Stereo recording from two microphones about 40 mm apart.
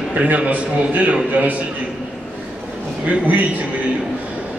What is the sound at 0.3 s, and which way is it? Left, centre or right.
Speech, right.